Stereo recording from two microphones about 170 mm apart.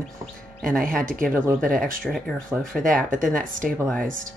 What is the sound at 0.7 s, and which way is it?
Speech, 55° right (ahead or behind).